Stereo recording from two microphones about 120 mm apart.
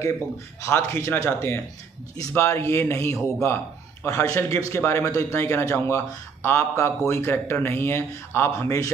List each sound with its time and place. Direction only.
0.6 s a man's voice: 20° left (ahead or behind)